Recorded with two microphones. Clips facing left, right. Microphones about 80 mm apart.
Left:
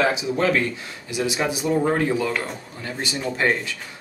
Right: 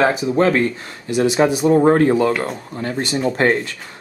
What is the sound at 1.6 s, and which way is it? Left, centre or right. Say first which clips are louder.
Speech: right 7 dB; right.